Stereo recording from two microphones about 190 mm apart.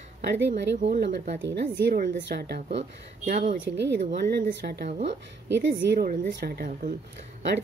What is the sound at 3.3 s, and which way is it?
Speech, 40° right (ahead or behind).